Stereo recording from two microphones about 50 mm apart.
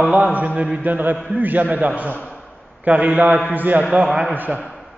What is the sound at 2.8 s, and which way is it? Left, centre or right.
A man's voice, right.